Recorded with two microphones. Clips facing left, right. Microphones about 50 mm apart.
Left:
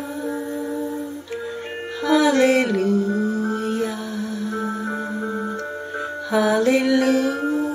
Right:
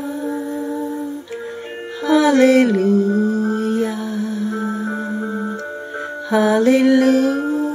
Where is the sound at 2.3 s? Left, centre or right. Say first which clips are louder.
Right 5 dB; right.